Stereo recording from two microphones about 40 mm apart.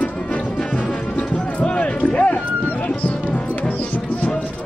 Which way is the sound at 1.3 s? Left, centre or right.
Left.